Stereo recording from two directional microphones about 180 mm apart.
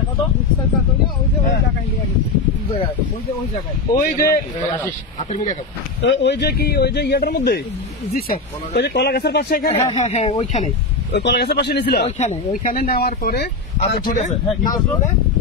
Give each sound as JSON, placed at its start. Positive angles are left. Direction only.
{"t": 3.9, "sound": "speech", "side_deg": 55}
{"t": 6.0, "sound": "speech", "side_deg": 85}
{"t": 9.8, "sound": "speech", "side_deg": 35}
{"t": 11.1, "sound": "speech", "side_deg": 65}
{"t": 12.2, "sound": "speech", "side_deg": 45}